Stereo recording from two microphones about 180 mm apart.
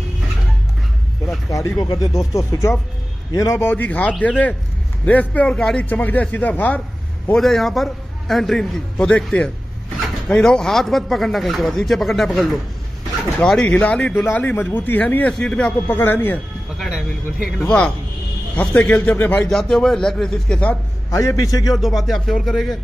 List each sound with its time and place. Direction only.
1.5 s speech: 20° left (ahead or behind)
16.7 s a sound: centre (ahead or behind)
17.6 s speech: 5° left (ahead or behind)
21.1 s speech: 20° left (ahead or behind)
21.7 s speech: centre (ahead or behind)